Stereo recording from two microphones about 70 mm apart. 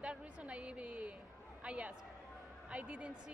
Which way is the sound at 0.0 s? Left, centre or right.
Centre.